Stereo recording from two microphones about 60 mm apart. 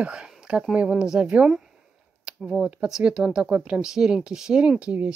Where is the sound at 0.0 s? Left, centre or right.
Centre.